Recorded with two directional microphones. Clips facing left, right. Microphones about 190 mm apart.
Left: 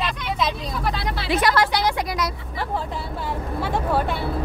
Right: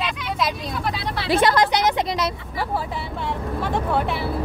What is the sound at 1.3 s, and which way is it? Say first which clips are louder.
Speech: right 2 dB; 25° right (ahead or behind).